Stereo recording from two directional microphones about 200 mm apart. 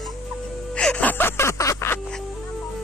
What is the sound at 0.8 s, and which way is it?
Music, 5° left (ahead or behind).